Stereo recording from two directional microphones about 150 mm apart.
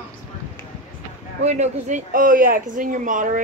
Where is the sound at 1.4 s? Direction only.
50° right (ahead or behind).